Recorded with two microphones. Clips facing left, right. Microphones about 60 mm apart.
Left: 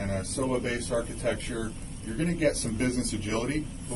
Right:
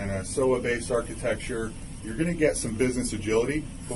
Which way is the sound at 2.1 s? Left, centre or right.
Right.